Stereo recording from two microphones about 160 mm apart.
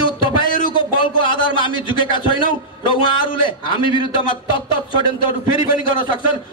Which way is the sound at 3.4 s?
30° left (ahead or behind).